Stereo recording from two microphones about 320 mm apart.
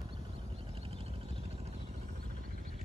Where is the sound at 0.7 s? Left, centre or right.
Centre.